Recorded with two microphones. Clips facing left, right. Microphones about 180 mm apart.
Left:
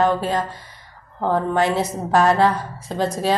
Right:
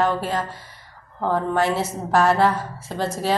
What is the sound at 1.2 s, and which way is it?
A woman's voice, 15° left (ahead or behind).